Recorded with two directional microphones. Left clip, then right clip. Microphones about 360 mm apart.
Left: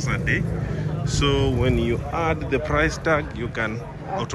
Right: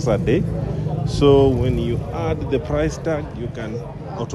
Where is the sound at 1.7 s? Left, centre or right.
Centre.